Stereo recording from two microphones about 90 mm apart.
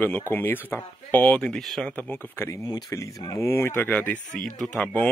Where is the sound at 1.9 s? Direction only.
20° left (ahead or behind).